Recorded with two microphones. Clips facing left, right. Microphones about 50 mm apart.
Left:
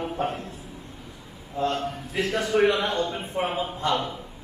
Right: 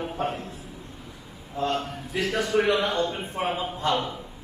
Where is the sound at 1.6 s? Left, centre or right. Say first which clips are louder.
Left 1 dB; centre.